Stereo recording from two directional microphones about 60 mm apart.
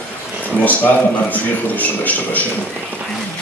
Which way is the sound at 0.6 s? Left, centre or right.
Left.